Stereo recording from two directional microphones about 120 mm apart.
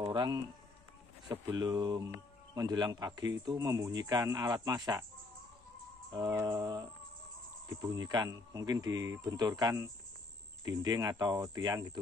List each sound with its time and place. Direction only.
0.0 s insect: 35° right (ahead or behind)
1.5 s speech: 35° right (ahead or behind)
6.1 s speech: 35° right (ahead or behind)